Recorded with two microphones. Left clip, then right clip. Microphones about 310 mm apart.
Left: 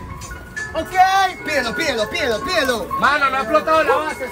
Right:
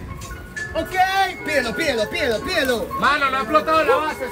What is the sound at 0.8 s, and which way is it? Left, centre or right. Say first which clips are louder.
Speech: left 4 dB; centre.